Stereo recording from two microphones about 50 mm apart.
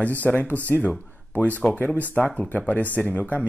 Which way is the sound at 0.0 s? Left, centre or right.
Left.